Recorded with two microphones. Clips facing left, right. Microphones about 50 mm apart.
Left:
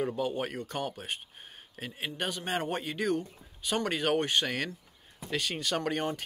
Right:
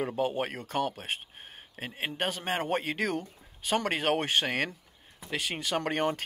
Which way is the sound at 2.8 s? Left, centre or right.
Right.